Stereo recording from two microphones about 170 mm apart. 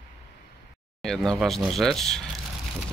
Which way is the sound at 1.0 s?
5° left (ahead or behind).